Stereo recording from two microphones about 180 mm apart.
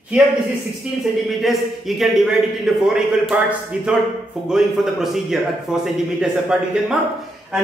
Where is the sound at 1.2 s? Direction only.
Centre (ahead or behind).